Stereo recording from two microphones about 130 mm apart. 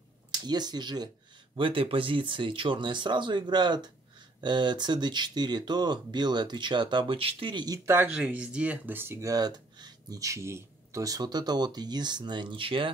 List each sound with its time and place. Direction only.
0.5 s speech: 30° right (ahead or behind)
8.1 s speech: 10° right (ahead or behind); by 12.9 s 40° right (ahead or behind)